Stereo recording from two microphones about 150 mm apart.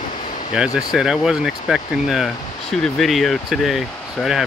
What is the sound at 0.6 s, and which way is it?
Speech, 5° right (ahead or behind).